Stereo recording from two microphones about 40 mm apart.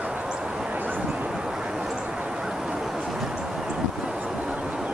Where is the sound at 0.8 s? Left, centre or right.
Right.